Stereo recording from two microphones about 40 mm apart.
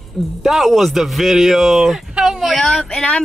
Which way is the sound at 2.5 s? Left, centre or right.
Centre.